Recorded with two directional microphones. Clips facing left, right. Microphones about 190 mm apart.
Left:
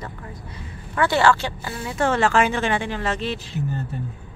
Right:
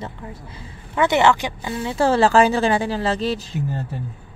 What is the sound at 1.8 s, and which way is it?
Speech, 30° right (ahead or behind).